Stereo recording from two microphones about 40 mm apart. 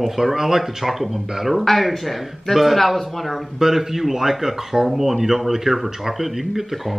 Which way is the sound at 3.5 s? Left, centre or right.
Centre.